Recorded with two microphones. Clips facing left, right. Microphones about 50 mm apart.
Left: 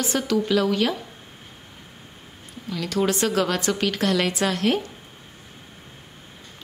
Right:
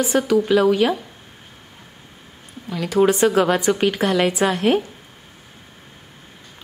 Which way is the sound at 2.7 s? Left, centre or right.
Centre.